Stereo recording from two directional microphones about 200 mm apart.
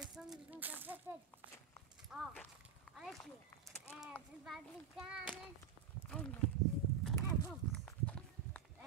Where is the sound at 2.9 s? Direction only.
Centre (ahead or behind).